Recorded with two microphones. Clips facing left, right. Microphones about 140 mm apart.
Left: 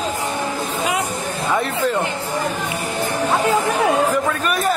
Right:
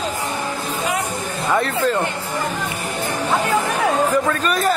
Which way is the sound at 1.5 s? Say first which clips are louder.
Right 2 dB; centre (ahead or behind).